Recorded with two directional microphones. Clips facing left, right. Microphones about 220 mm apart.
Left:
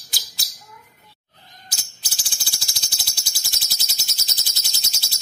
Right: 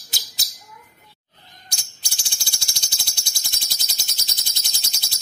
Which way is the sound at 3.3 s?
5° left (ahead or behind).